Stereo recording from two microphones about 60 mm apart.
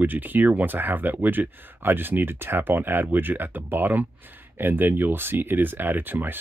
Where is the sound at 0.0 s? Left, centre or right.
Right.